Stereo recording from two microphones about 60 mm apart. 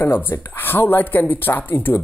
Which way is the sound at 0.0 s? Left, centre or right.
Left.